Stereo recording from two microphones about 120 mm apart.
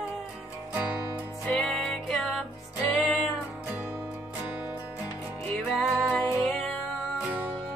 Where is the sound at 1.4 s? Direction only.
5° left (ahead or behind).